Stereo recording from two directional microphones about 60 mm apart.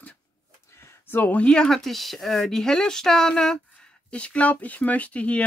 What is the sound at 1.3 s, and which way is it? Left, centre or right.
Speech, centre.